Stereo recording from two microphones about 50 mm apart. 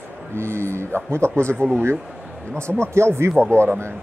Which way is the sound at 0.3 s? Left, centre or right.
Right.